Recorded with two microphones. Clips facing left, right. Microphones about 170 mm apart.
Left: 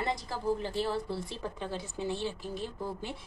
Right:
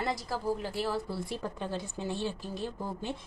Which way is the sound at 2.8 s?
20° right (ahead or behind).